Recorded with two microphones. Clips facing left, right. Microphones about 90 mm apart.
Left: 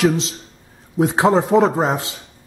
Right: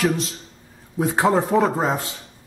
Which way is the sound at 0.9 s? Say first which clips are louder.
Left 3 dB; 20° left (ahead or behind).